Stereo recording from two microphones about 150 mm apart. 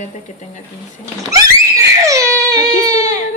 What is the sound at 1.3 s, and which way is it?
Screaming, 20° right (ahead or behind).